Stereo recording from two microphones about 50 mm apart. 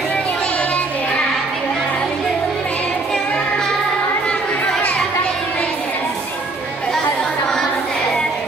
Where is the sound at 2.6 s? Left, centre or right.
Left.